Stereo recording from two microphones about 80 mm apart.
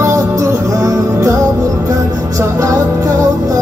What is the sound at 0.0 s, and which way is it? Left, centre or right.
Music, right.